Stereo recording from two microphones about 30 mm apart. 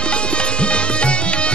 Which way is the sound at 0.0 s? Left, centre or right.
Left.